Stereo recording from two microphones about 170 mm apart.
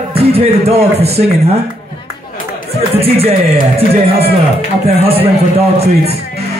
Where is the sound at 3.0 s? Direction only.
35° right (ahead or behind).